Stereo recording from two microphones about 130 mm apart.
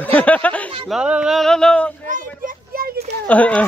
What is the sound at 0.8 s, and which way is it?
Speech, 5° right (ahead or behind).